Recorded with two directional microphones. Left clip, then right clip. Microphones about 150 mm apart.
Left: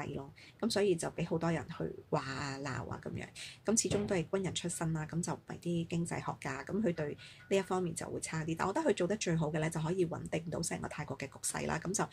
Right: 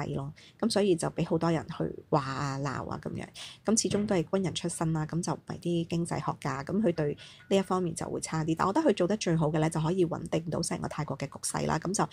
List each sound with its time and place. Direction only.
0.0 s speech: 40° right (ahead or behind)